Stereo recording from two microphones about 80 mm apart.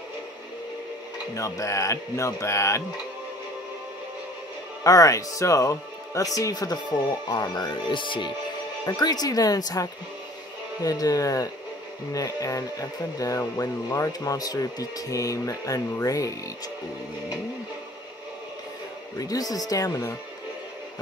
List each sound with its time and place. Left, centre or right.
1.3 s a man's voice: left
4.8 s speech: left
8.8 s speech: left
19.1 s speech: left